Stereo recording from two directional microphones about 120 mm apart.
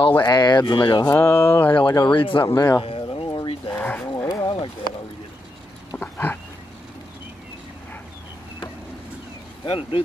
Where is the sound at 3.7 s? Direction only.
15° left (ahead or behind).